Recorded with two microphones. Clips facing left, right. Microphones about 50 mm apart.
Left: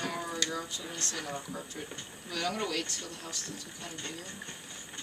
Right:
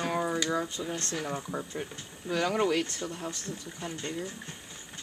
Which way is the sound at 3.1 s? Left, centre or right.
Right.